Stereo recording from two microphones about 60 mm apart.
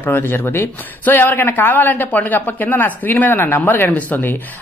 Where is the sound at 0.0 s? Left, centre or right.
Left.